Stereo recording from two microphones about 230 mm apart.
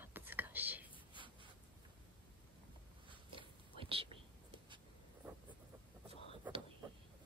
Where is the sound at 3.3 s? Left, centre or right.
Right.